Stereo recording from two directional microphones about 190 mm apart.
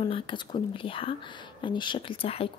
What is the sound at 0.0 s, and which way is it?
Speech, 25° left (ahead or behind).